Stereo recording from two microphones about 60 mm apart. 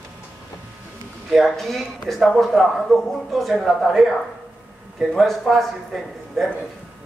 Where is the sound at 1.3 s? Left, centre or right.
Centre.